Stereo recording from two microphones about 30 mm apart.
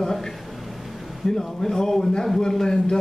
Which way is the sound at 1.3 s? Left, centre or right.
Centre.